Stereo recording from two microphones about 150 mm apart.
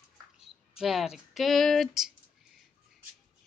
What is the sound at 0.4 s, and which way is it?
Speech, centre (ahead or behind).